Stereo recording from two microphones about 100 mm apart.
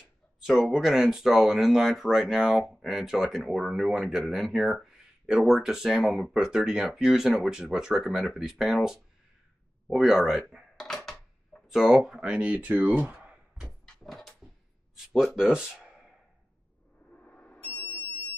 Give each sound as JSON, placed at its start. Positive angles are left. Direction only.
{"t": 0.5, "sound": "speech", "side_deg": 0}
{"t": 10.5, "sound": "a sound", "side_deg": 5}
{"t": 11.9, "sound": "speech", "side_deg": -10}
{"t": 13.0, "sound": "a sound", "side_deg": -15}
{"t": 13.9, "sound": "dog", "side_deg": 0}
{"t": 15.3, "sound": "speech", "side_deg": -5}
{"t": 17.2, "sound": "smoke detector", "side_deg": 15}